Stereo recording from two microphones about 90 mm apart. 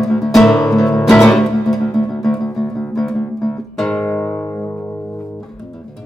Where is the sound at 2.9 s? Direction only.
Centre (ahead or behind).